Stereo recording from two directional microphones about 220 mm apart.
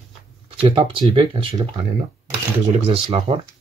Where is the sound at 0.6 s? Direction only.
25° right (ahead or behind).